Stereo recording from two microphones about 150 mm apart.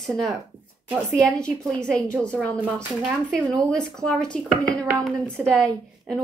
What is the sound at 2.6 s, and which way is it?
A woman's voice, centre (ahead or behind).